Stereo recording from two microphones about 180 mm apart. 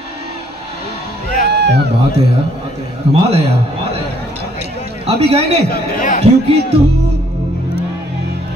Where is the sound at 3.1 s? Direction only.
35° right (ahead or behind).